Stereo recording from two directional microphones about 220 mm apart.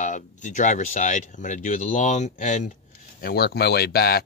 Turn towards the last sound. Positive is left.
turn(degrees=45)  # may be behind; listen again after turning